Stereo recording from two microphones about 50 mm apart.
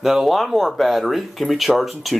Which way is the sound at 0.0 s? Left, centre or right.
Centre.